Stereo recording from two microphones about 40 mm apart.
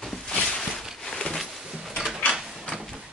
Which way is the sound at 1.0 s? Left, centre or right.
Centre.